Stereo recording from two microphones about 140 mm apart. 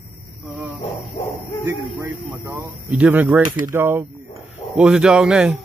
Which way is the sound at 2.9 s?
10° right (ahead or behind).